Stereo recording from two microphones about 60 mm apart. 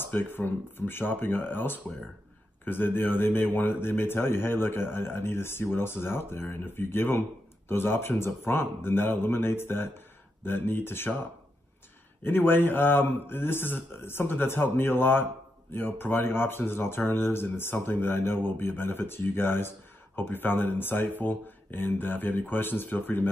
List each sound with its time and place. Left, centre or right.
0.0 s speech: left
12.2 s speech: left